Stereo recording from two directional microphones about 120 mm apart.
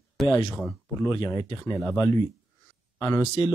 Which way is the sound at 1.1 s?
30° left (ahead or behind).